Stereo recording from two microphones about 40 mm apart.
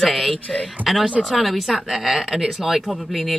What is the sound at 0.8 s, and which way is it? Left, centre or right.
Speech, right.